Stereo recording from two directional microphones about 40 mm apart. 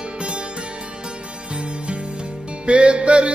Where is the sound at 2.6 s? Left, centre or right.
Right.